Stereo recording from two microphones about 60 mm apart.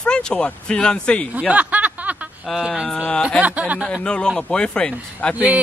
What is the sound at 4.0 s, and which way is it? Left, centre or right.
A man's voice, centre.